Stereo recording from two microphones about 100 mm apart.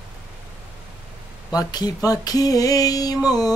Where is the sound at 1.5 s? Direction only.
40° left (ahead or behind).